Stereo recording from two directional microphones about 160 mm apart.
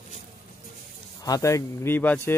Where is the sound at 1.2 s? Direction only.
20° left (ahead or behind).